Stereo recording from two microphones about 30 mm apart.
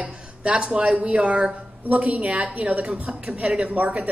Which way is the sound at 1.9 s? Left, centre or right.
Right.